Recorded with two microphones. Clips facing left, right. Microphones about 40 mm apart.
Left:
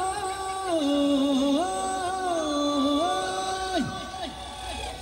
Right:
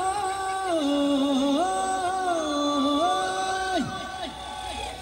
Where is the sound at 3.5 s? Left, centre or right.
Centre.